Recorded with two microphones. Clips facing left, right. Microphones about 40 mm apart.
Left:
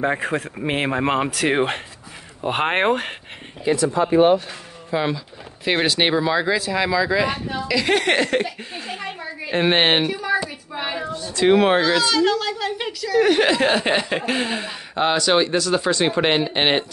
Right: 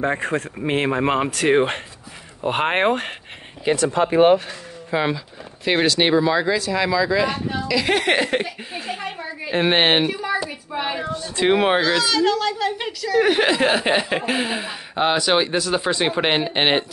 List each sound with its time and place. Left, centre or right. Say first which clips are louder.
0.0 s speech: even; centre
3.6 s speech: even; right
4.9 s speech: right 1 dB; centre
5.9 s speech: right 3 dB; centre
11.0 s speech: right 1 dB; right
11.4 s speech: left 2 dB; centre